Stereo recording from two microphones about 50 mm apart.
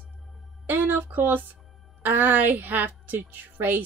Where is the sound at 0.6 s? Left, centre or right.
Right.